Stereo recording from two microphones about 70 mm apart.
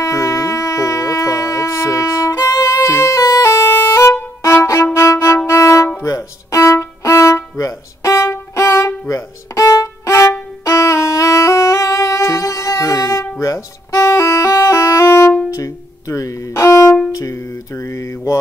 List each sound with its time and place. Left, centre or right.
0.0 s music: left
3.2 s music: left
4.9 s violin: left
5.5 s music: left